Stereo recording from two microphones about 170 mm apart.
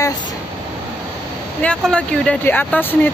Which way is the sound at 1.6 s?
5° left (ahead or behind).